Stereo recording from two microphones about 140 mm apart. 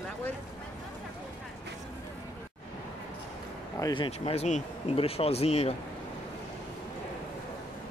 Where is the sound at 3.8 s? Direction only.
35° left (ahead or behind).